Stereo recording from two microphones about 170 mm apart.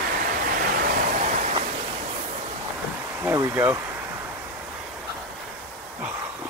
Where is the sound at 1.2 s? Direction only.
45° right (ahead or behind).